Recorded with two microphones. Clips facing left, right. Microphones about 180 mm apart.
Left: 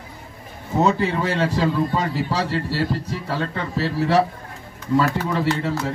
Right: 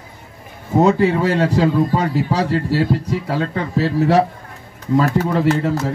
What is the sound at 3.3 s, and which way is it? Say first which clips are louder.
Speech: right 2 dB; 45° right (ahead or behind).